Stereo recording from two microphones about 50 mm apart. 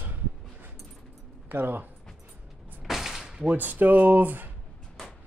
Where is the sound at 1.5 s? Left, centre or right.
Right.